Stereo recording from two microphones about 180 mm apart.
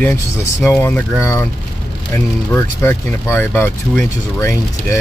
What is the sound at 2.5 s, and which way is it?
Speech, 15° left (ahead or behind).